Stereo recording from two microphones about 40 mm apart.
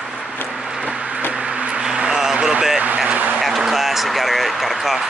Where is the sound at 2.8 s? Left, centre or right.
Right.